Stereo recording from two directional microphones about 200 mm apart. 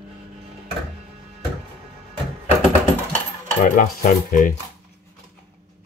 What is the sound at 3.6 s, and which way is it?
Cutlery, 40° left (ahead or behind).